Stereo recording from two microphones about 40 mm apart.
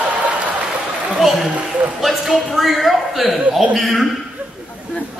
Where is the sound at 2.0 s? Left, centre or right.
Centre.